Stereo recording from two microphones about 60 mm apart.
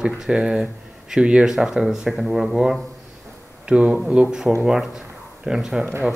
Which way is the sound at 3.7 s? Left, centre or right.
Centre.